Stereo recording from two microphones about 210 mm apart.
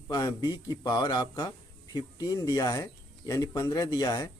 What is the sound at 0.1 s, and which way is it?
Speech, 20° left (ahead or behind).